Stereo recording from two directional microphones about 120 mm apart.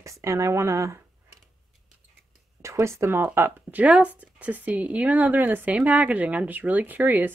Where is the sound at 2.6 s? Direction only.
25° right (ahead or behind).